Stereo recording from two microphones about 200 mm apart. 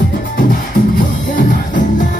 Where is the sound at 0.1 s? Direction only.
45° left (ahead or behind).